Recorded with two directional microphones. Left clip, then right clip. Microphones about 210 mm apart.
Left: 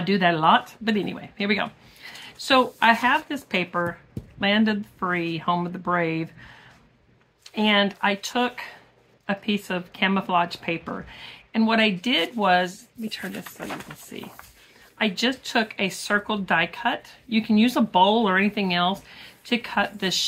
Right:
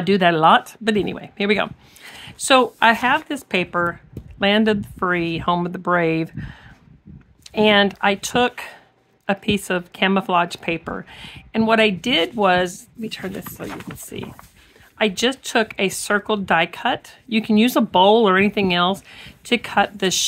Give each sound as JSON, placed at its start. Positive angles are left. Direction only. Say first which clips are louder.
{"t": 0.0, "sound": "speech", "louder": "right 5 dB", "side_deg": -55}